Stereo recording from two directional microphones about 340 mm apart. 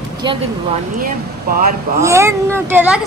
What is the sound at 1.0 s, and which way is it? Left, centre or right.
Speech, right.